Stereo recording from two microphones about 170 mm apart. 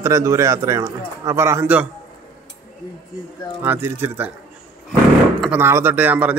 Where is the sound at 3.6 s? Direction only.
15° right (ahead or behind).